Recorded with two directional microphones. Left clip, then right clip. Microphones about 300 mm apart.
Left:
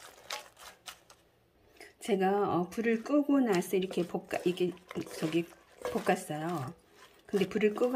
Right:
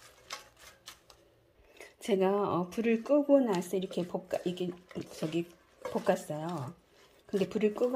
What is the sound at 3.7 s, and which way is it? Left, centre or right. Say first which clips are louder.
Speech: left 3 dB; left.